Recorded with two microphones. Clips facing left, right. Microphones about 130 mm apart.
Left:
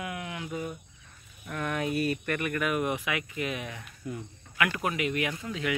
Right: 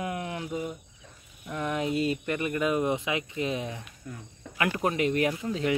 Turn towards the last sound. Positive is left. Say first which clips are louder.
# right 5 dB
turn(degrees=-35)  # may be behind; listen again after turning